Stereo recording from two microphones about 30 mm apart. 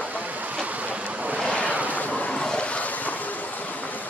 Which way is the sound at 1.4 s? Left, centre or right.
Left.